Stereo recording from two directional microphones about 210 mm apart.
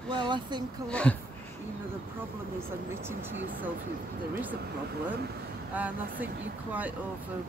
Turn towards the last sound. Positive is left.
turn(degrees=-5)  # may be behind; listen again after turning